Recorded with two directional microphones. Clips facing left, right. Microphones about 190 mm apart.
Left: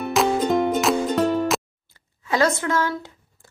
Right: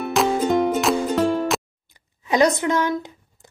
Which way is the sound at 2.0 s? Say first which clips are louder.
Right 3 dB; 15° right (ahead or behind).